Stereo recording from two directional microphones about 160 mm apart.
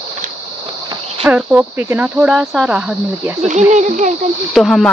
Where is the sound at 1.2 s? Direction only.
10° right (ahead or behind).